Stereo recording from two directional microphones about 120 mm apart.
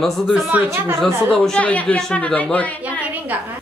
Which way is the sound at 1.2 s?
5° left (ahead or behind).